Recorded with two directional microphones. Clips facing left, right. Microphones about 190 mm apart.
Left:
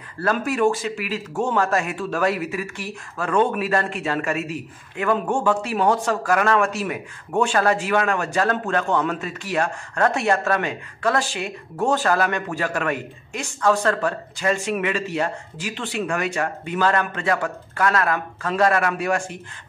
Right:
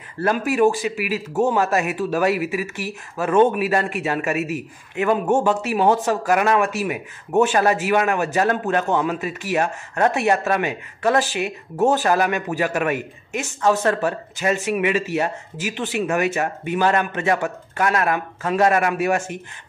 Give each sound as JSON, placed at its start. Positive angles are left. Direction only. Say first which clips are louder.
{"t": 0.2, "sound": "speech", "louder": "right 3 dB", "side_deg": -20}